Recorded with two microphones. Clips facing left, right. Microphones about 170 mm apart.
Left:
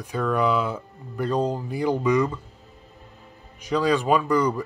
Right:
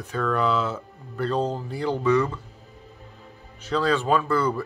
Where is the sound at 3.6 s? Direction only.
15° left (ahead or behind).